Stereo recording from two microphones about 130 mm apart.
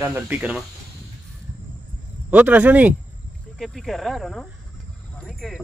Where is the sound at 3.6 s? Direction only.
Centre (ahead or behind).